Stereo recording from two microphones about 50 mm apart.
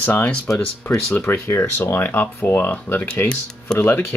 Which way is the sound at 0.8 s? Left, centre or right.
Left.